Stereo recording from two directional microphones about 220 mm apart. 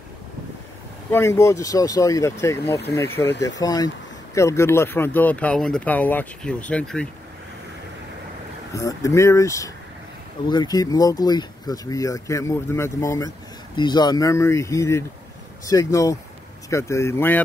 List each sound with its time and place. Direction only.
1.1 s speech: 10° left (ahead or behind)
8.7 s speech: 15° left (ahead or behind)